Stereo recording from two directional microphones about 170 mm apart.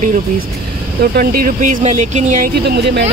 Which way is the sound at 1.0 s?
60° right (ahead or behind).